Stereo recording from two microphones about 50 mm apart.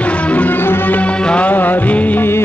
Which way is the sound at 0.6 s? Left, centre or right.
Left.